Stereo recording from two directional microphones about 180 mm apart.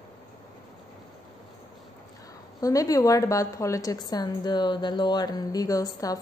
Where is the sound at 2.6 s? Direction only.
20° left (ahead or behind).